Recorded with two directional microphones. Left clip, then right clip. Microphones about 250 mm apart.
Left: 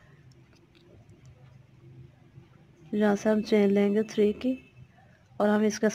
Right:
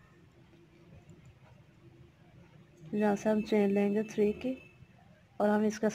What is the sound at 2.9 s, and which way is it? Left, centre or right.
A woman's voice, centre.